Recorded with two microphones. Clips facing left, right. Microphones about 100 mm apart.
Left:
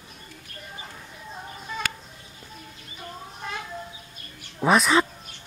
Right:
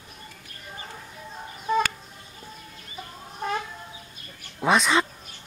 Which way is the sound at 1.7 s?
40° right (ahead or behind).